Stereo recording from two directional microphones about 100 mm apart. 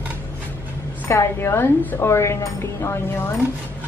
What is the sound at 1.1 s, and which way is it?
A woman's voice, 30° left (ahead or behind).